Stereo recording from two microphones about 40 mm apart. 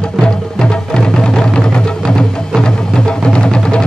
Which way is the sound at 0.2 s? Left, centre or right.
Left.